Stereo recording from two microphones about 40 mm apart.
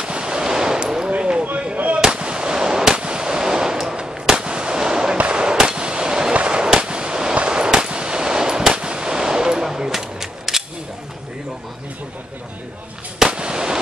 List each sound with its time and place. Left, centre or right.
0.0 s machine gun: right
1.1 s a sound: right
3.0 s fireworks: right
5.1 s fireworks: right
7.3 s gunshot: right
13.3 s fireworks: right